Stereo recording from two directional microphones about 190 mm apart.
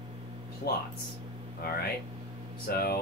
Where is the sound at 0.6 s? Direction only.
50° left (ahead or behind).